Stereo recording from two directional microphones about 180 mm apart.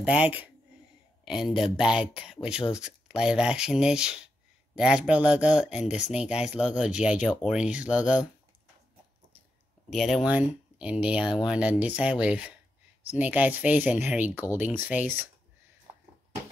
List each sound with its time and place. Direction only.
0.0 s speech: 5° right (ahead or behind)
9.8 s speech: centre (ahead or behind)